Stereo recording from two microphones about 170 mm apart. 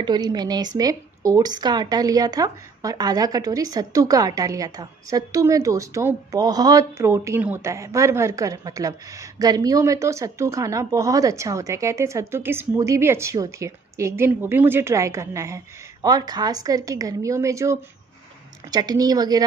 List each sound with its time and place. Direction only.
0.0 s speech: 25° right (ahead or behind)